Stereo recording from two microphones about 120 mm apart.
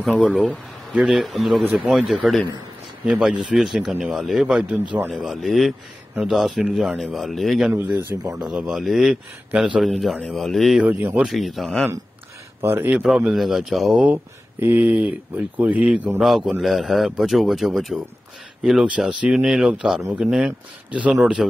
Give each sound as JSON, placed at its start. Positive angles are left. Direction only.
{"t": 0.0, "sound": "a man's voice", "side_deg": -5}
{"t": 7.7, "sound": "speech", "side_deg": -15}
{"t": 8.4, "sound": "a man's voice", "side_deg": -5}
{"t": 10.8, "sound": "speech", "side_deg": -15}
{"t": 11.2, "sound": "a man's voice", "side_deg": 0}
{"t": 12.6, "sound": "speech", "side_deg": -20}
{"t": 12.9, "sound": "a man's voice", "side_deg": -5}
{"t": 14.0, "sound": "a man's voice", "side_deg": -20}